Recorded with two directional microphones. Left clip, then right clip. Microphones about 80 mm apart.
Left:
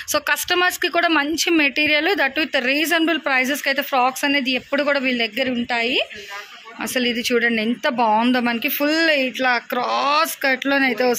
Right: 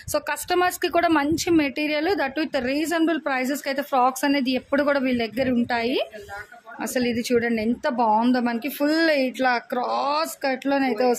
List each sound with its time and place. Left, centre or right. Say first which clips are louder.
0.1 s a woman's voice: left 5 dB; centre
0.6 s a woman's voice: right 1 dB; right
4.0 s a woman's voice: even; right
6.9 s a woman's voice: left 4 dB; centre
7.3 s speech: left 2 dB; centre
8.9 s speech: left 2 dB; right
9.5 s speech: left 3 dB; centre